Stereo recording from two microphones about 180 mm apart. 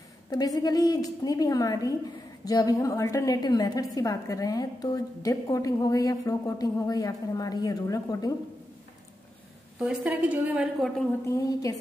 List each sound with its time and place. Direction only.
0.3 s a woman's voice: 20° left (ahead or behind)
9.8 s a woman's voice: 5° right (ahead or behind)
11.2 s a woman's voice: 20° left (ahead or behind)